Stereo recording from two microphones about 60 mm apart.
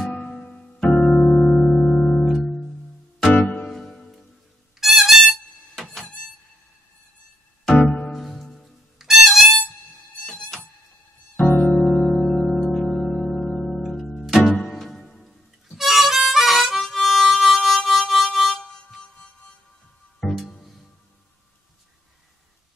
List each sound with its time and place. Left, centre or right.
0.3 s piano: centre
2.2 s music: centre
3.4 s music: left
3.7 s music: centre
8.1 s music: centre
11.3 s music: left
11.8 s music: centre
14.6 s harmonica: centre
20.4 s music: centre